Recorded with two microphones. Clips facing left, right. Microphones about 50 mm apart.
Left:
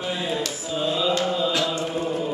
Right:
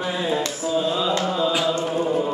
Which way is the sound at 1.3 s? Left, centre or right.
Centre.